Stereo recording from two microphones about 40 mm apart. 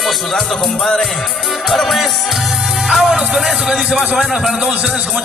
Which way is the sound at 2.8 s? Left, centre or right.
Centre.